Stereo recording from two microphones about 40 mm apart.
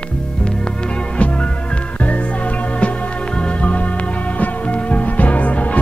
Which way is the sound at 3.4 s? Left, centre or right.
Left.